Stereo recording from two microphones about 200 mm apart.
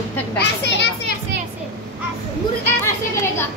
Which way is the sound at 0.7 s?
60° left (ahead or behind).